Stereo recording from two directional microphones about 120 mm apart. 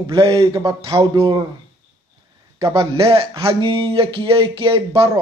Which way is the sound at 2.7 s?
50° right (ahead or behind).